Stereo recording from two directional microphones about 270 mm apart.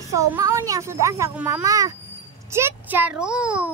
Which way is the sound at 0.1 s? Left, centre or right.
Centre.